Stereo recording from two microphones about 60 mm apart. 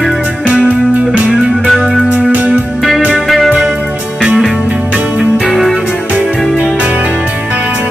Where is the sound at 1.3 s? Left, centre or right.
Centre.